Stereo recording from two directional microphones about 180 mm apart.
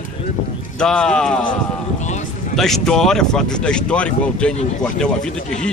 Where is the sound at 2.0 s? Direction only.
40° left (ahead or behind).